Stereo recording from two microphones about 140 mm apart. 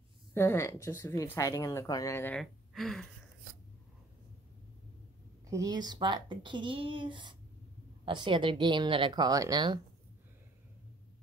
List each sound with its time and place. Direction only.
0.3 s a woman's voice: 15° left (ahead or behind)
2.3 s speech: centre (ahead or behind)
5.5 s speech: 25° right (ahead or behind)